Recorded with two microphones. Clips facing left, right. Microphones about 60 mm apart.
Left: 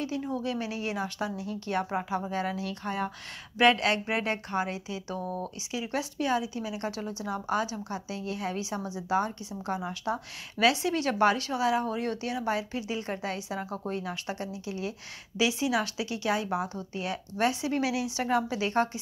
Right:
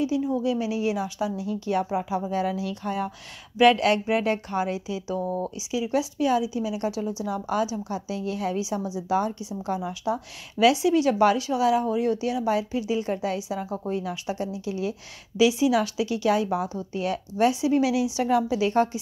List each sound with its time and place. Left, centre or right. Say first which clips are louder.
0.0 s a woman's voice: right 7 dB; left
5.2 s speech: right 6 dB; right
5.7 s a woman's voice: right 7 dB; left